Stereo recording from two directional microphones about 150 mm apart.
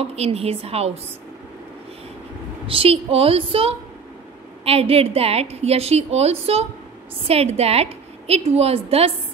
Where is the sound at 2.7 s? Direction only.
40° right (ahead or behind).